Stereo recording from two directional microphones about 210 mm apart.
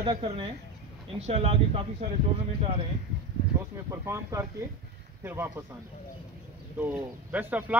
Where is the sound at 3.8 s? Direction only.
15° right (ahead or behind).